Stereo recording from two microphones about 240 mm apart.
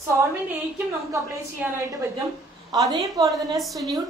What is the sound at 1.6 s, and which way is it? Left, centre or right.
Speech, centre.